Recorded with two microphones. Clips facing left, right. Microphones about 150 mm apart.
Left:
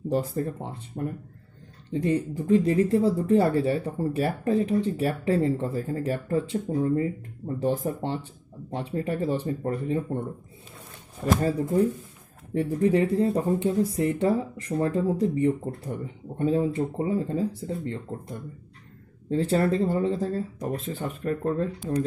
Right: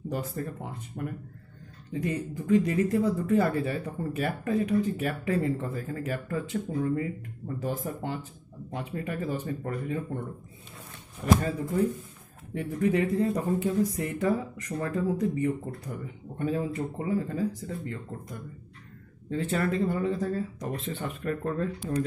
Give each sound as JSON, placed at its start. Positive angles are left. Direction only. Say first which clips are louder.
{"t": 0.1, "sound": "speech", "louder": "left 7 dB", "side_deg": 30}
{"t": 12.5, "sound": "speech", "louder": "left 4 dB", "side_deg": 30}